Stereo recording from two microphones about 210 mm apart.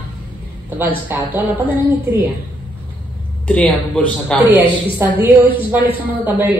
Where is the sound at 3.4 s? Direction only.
5° left (ahead or behind).